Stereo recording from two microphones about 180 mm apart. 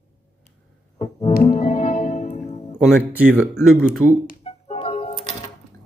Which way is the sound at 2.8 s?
5° right (ahead or behind).